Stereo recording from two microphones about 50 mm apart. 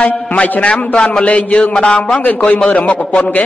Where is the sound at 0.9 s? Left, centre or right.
Centre.